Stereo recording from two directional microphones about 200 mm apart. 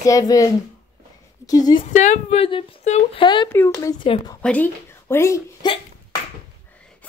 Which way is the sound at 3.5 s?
10° left (ahead or behind).